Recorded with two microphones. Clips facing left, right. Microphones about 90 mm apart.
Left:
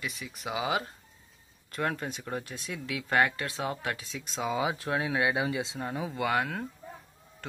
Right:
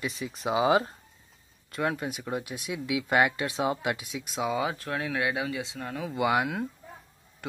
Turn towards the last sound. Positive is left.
turn(degrees=-10)  # may be behind; listen again after turning